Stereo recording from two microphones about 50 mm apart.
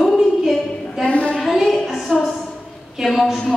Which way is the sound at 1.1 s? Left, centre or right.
Left.